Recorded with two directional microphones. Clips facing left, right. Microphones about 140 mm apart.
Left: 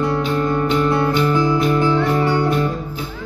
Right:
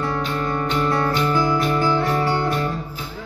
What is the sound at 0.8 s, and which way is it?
Music, 20° left (ahead or behind).